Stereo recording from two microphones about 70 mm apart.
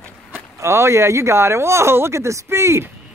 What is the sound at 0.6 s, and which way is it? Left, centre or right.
Speech, right.